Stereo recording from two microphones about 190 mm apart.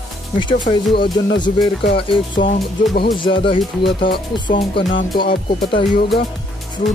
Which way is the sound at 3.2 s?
25° left (ahead or behind).